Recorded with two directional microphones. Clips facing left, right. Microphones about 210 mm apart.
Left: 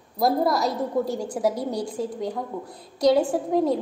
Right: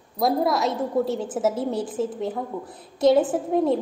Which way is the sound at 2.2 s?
5° right (ahead or behind).